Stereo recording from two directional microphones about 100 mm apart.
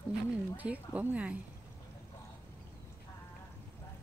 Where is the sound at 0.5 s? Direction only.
15° right (ahead or behind).